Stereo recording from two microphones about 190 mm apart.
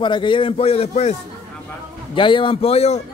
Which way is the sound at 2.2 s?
25° left (ahead or behind).